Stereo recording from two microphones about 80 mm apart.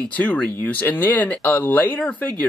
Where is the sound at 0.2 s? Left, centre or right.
Left.